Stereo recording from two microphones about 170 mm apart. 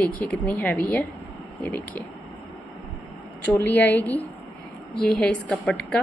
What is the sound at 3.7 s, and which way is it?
A woman's voice, 10° left (ahead or behind).